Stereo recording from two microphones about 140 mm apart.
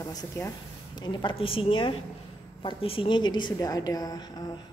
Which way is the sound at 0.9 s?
35° left (ahead or behind).